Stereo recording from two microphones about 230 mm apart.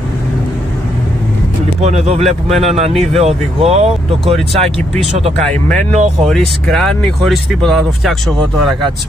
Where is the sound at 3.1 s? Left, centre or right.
Right.